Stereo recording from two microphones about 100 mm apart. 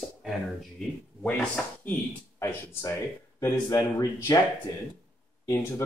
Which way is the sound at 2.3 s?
25° left (ahead or behind).